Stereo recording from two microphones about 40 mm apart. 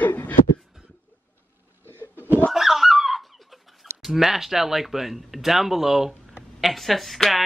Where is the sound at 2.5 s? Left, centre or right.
Centre.